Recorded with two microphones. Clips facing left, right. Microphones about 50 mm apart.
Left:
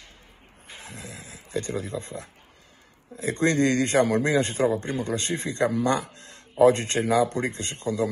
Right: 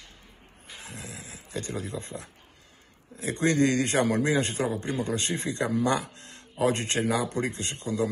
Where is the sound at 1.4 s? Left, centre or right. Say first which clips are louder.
Left 4 dB; left.